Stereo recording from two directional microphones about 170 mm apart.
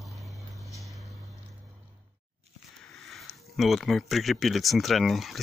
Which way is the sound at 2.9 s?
Centre (ahead or behind).